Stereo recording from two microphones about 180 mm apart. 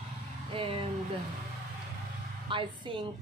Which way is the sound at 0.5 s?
30° right (ahead or behind).